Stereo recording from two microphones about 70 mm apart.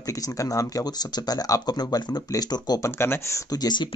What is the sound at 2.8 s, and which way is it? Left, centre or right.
Speech, left.